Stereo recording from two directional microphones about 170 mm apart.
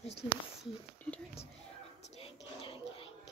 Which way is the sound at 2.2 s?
30° left (ahead or behind).